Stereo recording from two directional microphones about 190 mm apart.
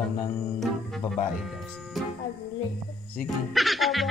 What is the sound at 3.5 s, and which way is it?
Music, centre (ahead or behind).